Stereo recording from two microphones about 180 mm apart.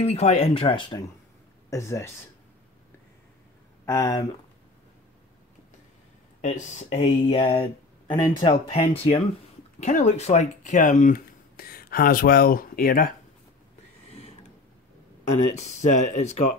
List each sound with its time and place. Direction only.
0.0 s speech: 35° left (ahead or behind)
1.7 s speech: 15° left (ahead or behind)
3.8 s speech: 15° left (ahead or behind)
6.4 s speech: 40° left (ahead or behind)
15.5 s speech: 40° left (ahead or behind)